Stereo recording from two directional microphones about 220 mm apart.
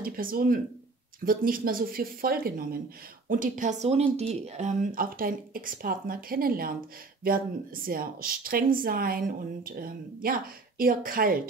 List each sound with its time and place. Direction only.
0.0 s speech: 40° right (ahead or behind)